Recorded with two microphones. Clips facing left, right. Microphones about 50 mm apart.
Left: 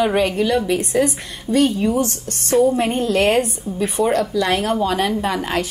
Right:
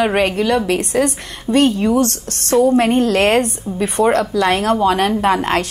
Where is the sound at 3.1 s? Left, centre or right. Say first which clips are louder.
Right 2 dB; right.